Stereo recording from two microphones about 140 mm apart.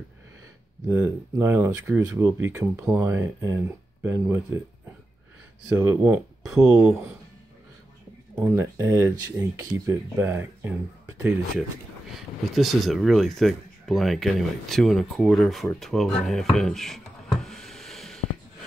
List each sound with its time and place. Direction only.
0.8 s speech: 15° right (ahead or behind)
5.8 s speech: 15° right (ahead or behind)
6.4 s speech: 5° right (ahead or behind)
8.4 s speech: 15° right (ahead or behind)
12.1 s speech: centre (ahead or behind)
15.8 s a sound: centre (ahead or behind)